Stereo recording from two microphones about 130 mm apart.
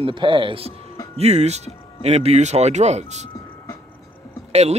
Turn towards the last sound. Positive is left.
turn(degrees=-55)  # may be behind; listen again after turning